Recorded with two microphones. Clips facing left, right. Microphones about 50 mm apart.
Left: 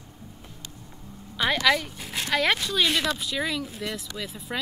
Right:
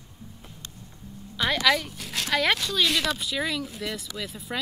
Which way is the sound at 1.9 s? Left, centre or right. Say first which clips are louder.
Even; centre.